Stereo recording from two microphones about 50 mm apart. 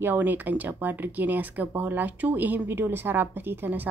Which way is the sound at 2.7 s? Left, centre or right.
Right.